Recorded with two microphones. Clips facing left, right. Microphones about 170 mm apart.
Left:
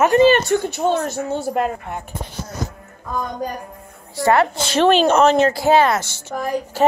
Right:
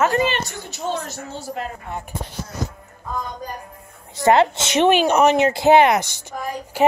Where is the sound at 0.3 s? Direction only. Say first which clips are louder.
Left 12 dB; 55° left (ahead or behind).